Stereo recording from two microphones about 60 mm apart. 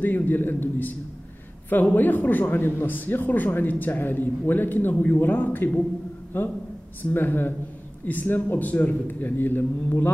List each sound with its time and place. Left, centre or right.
0.0 s a man's voice: left